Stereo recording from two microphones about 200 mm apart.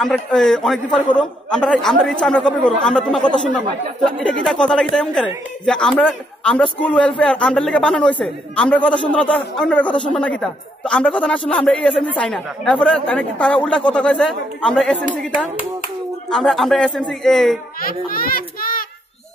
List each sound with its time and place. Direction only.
0.0 s a man's voice: 5° left (ahead or behind)
16.3 s a man's voice: centre (ahead or behind)
17.7 s a child's voice: 45° left (ahead or behind)